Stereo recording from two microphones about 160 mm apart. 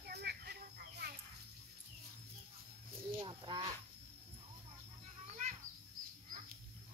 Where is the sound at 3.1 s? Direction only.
30° right (ahead or behind).